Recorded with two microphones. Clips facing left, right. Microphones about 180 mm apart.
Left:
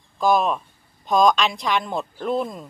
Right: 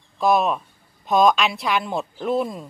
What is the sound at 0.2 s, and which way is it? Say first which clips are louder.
Speech: even; centre (ahead or behind).